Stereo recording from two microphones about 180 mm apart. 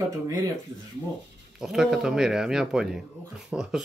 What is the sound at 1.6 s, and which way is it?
Speech, centre (ahead or behind).